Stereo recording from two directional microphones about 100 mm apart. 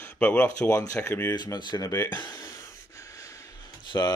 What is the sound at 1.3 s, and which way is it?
Speech, 45° left (ahead or behind).